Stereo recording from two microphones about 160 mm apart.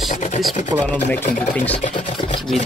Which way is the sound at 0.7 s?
20° right (ahead or behind).